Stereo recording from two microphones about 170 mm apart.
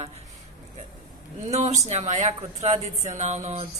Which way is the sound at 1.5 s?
40° right (ahead or behind).